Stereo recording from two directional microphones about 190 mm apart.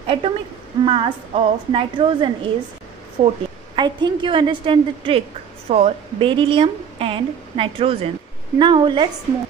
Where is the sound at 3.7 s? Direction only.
25° right (ahead or behind).